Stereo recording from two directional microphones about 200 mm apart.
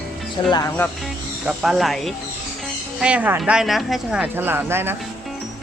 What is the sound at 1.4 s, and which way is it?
Speech, centre (ahead or behind).